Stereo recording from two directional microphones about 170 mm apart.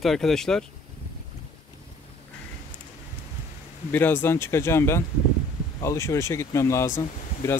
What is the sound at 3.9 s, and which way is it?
Speech, 10° left (ahead or behind).